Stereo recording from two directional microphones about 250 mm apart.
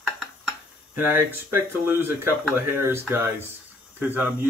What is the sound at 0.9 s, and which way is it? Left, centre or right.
Speech, centre.